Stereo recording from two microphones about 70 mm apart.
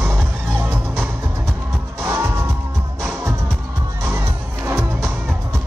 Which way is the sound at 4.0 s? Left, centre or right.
Right.